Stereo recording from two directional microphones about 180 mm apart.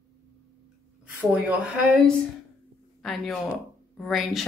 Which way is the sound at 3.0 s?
Centre (ahead or behind).